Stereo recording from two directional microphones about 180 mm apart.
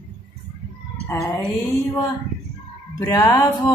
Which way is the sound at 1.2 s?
5° left (ahead or behind).